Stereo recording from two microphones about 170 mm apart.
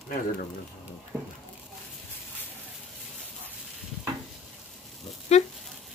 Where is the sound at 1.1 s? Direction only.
5° right (ahead or behind).